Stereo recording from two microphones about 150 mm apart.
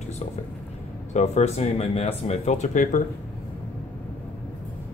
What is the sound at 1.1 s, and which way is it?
Speech, 50° left (ahead or behind).